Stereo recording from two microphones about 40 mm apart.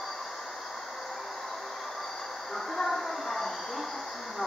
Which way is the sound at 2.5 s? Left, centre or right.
Centre.